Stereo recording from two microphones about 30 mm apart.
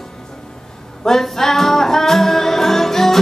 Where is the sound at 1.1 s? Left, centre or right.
Centre.